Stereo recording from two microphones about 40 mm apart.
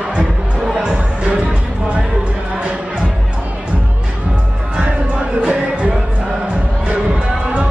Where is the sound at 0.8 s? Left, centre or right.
Right.